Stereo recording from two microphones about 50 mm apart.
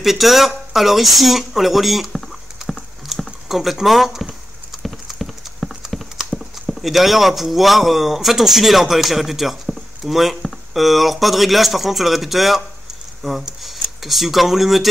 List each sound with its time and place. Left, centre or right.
0.0 s speech: centre
4.8 s clip-clop: centre
6.7 s speech: centre